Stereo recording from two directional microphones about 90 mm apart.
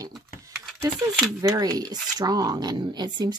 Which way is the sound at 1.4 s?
45° right (ahead or behind).